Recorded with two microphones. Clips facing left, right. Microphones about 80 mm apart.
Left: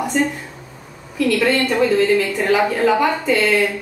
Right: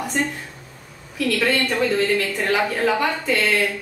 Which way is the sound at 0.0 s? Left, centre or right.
Centre.